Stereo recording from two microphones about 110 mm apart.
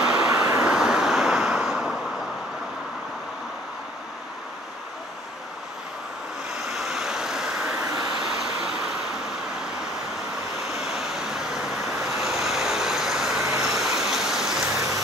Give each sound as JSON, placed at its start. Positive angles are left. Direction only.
{"t": 0.0, "sound": "vehicle", "side_deg": -5}
{"t": 6.7, "sound": "vehicle", "side_deg": -5}
{"t": 7.8, "sound": "vehicle", "side_deg": -30}
{"t": 8.2, "sound": "vehicle", "side_deg": -5}
{"t": 10.7, "sound": "vehicle", "side_deg": -5}